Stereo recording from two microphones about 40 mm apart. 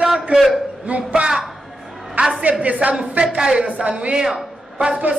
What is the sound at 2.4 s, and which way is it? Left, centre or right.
Speech, right.